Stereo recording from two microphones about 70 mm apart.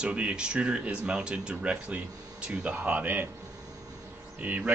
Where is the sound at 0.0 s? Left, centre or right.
Centre.